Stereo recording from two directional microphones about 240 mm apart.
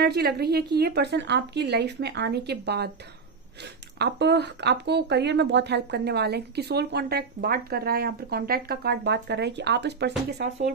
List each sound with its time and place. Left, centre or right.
0.0 s speech: right
4.0 s speech: right